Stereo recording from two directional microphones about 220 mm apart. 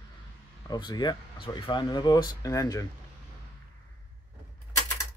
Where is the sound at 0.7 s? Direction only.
20° left (ahead or behind).